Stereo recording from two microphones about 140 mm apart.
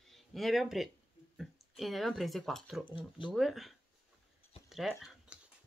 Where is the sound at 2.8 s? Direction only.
35° left (ahead or behind).